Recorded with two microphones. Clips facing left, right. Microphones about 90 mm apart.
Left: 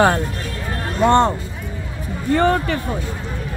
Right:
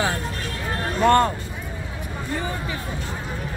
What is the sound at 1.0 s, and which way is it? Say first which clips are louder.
Speech: left 3 dB; 20° left (ahead or behind).